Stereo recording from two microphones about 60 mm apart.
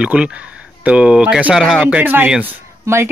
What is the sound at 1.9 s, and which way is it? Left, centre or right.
Speech, right.